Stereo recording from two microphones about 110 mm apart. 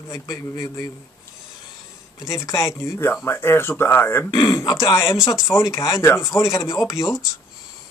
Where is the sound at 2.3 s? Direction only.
30° left (ahead or behind).